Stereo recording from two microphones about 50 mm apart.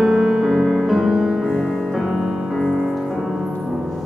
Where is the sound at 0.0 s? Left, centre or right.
Centre.